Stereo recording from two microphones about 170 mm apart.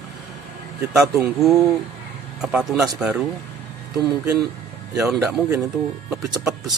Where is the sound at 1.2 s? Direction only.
Centre (ahead or behind).